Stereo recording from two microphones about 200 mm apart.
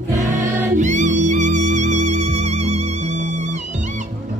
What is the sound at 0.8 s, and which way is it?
Music, 35° right (ahead or behind).